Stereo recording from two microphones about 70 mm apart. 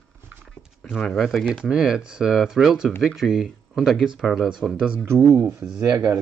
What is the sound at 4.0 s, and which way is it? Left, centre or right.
Speech, centre.